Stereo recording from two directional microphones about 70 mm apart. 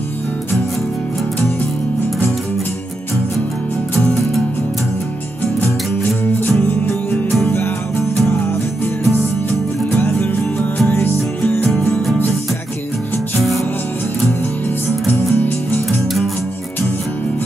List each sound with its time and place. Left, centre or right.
6.4 s music: left
9.1 s music: left
15.1 s music: left